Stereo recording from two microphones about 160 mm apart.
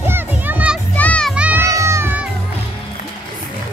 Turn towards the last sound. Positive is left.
turn(degrees=-15)  # may be behind; listen again after turning